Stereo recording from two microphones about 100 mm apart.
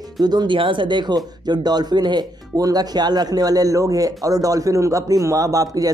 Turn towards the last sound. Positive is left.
turn(degrees=-35)  # may be behind; listen again after turning